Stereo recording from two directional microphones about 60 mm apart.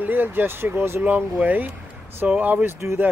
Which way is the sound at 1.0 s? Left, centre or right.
Right.